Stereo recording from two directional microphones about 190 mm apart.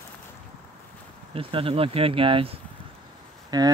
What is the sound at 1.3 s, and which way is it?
Speech, 30° right (ahead or behind).